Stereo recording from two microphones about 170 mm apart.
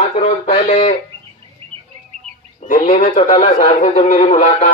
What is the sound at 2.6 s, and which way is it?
A man's voice, 45° left (ahead or behind).